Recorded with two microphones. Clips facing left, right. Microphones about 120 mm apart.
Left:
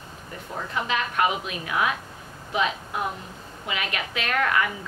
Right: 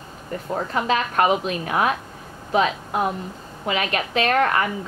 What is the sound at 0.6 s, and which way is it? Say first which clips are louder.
A woman's voice: right 5 dB; 40° right (ahead or behind).